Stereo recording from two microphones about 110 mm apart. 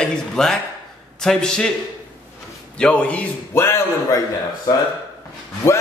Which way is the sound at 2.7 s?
10° left (ahead or behind).